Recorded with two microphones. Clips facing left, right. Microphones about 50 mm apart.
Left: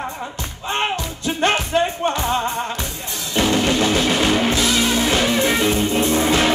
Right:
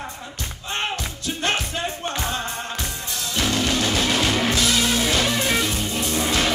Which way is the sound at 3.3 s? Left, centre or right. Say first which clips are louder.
Left 5 dB; left.